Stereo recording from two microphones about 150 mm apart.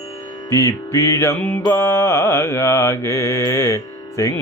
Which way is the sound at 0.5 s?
20° left (ahead or behind).